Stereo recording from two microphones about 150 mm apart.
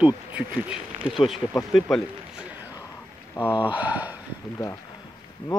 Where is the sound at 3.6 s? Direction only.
10° right (ahead or behind).